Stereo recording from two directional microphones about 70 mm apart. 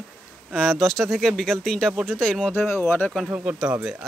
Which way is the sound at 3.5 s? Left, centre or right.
Centre.